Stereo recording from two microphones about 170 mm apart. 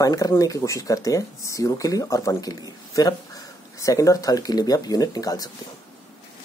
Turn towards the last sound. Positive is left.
turn(degrees=20)  # may be behind; listen again after turning